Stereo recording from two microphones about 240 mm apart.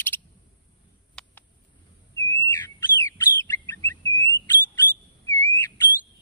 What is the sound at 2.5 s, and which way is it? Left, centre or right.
Bird, centre.